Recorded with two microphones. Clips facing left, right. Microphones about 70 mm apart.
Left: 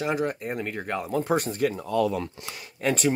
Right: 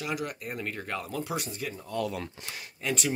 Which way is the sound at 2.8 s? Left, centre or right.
Left.